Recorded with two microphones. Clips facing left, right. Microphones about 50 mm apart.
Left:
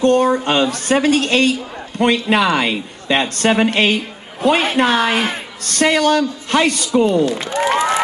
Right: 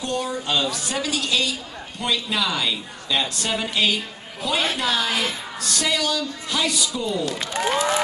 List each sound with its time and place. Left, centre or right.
0.0 s a woman's voice: left
7.2 s speech: left